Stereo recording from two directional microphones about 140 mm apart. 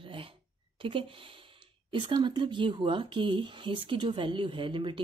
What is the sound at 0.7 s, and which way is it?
Speech, 40° right (ahead or behind).